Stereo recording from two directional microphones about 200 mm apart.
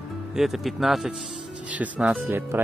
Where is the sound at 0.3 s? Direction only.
Centre (ahead or behind).